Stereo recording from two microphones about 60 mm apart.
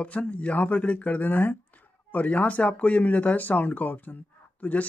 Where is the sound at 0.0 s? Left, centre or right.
Left.